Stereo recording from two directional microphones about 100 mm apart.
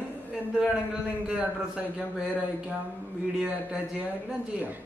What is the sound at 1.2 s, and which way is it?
Speech, 10° right (ahead or behind).